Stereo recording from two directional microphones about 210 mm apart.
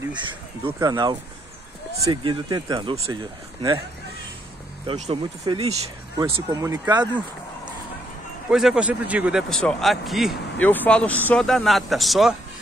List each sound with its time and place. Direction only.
0.1 s speech: 20° right (ahead or behind)
2.2 s speech: 20° right (ahead or behind)
4.8 s speech: 30° right (ahead or behind)
8.5 s a man's voice: 5° right (ahead or behind)